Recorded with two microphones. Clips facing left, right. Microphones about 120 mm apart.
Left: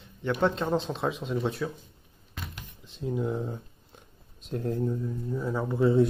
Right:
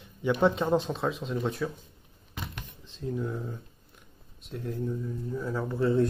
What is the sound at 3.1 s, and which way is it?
Speech, 20° left (ahead or behind).